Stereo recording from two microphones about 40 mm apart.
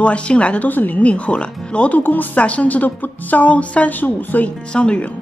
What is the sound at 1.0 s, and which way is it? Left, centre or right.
Speech, left.